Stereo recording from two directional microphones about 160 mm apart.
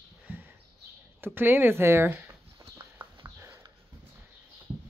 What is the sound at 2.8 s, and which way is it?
Clip-clop, 10° right (ahead or behind).